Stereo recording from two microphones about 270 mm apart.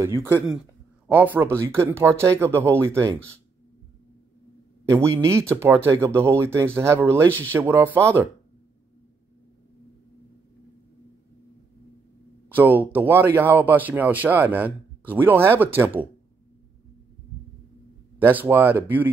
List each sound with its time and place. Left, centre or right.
0.0 s speech: centre
4.8 s speech: centre
12.4 s speech: centre
18.2 s speech: centre